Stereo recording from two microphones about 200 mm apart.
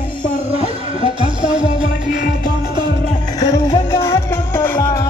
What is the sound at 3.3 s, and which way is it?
Music, 20° left (ahead or behind).